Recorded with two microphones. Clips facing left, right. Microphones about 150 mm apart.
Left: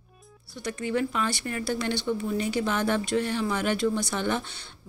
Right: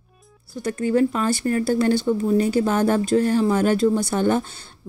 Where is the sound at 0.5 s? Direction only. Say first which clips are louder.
Right 8 dB; 45° right (ahead or behind).